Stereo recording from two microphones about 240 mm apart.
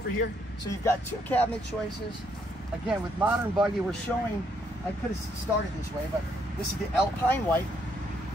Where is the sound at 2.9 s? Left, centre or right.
Centre.